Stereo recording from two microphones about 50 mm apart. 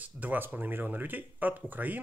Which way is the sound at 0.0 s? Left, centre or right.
Right.